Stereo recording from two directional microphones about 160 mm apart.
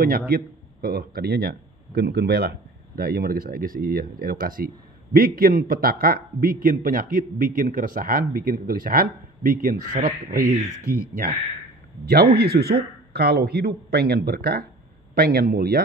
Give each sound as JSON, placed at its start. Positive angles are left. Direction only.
{"t": 0.3, "sound": "speech", "side_deg": -70}
{"t": 3.0, "sound": "speech", "side_deg": -70}